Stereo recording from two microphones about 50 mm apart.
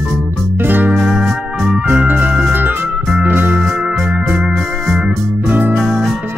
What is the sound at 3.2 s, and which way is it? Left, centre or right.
Music, right.